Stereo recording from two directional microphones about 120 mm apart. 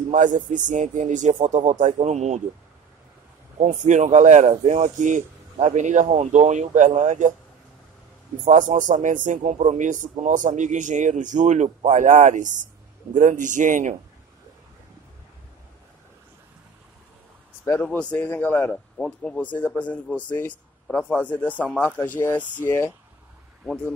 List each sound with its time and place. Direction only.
0.1 s a man's voice: 90° right; by 2.4 s 70° right (ahead or behind)
3.6 s a man's voice: 85° right
8.5 s a man's voice: 90° right
17.7 s speech: 10° left (ahead or behind)